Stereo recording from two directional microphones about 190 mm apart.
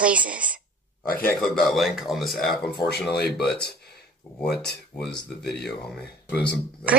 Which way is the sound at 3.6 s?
60° left (ahead or behind).